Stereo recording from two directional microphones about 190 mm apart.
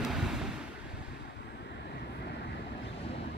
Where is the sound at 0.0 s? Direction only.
Centre (ahead or behind).